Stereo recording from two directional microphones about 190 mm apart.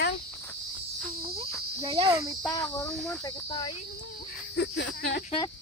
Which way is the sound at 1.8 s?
25° right (ahead or behind).